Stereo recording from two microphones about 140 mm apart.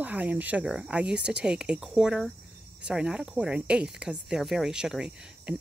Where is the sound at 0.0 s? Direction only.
10° right (ahead or behind).